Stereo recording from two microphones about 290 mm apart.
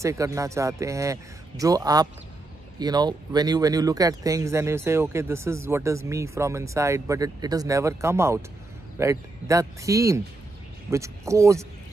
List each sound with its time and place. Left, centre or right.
0.0 s speech: centre